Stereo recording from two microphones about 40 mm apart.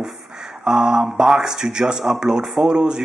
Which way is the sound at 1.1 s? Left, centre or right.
Centre.